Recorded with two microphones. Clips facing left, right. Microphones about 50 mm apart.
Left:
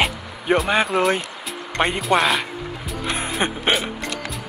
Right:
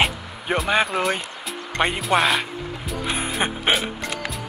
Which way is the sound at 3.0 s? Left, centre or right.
Centre.